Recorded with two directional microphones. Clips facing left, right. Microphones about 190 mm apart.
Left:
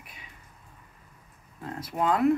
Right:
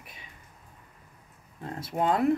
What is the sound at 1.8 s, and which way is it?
Speech, 25° right (ahead or behind).